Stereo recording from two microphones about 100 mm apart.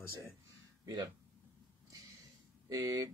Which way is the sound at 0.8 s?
40° right (ahead or behind).